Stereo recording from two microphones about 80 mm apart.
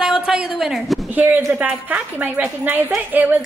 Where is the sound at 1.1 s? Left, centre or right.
Right.